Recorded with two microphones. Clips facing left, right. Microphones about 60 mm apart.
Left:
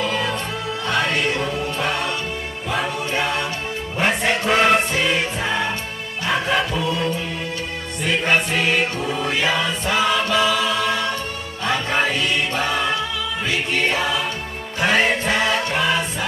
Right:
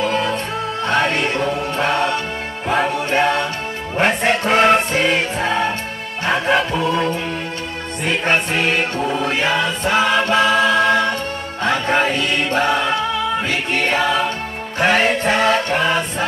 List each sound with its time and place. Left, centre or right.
0.0 s music: right